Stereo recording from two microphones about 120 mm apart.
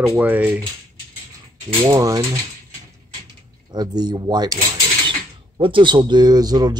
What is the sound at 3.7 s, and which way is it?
Speech, 35° right (ahead or behind).